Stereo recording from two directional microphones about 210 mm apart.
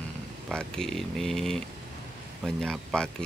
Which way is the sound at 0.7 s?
Centre (ahead or behind).